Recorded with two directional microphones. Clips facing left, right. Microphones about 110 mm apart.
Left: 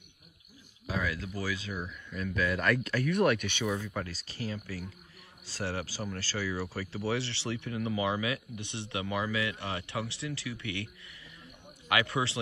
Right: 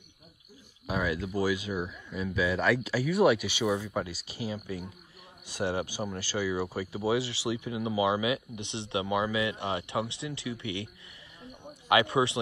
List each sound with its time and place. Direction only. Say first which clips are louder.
0.8 s speech: right 4 dB; 20° right (ahead or behind)
11.9 s speech: right 5 dB; 20° right (ahead or behind)